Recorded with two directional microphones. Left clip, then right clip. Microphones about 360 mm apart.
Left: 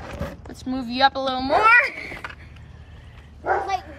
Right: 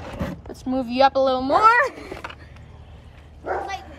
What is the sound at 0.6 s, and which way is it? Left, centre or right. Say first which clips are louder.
Speech: right 2 dB; centre.